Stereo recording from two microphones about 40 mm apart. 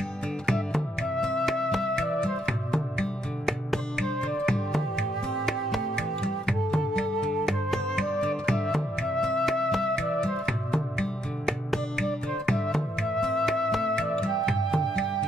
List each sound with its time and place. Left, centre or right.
0.5 s music: centre
2.1 s music: centre
5.9 s music: centre
8.0 s music: centre
9.9 s music: centre
13.9 s music: centre